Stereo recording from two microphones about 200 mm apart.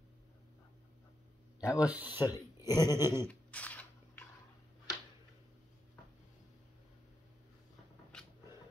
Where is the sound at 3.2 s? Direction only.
5° left (ahead or behind).